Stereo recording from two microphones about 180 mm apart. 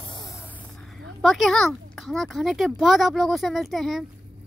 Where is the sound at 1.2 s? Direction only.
Centre (ahead or behind).